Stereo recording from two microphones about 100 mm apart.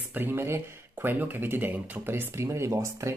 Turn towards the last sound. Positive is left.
turn(degrees=-30)  # may be behind; listen again after turning